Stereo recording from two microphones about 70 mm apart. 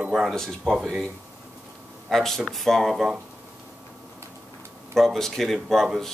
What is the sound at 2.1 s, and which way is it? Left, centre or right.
Speech, centre.